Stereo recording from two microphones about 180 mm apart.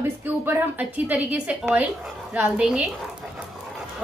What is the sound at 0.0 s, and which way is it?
A woman's voice, 10° right (ahead or behind).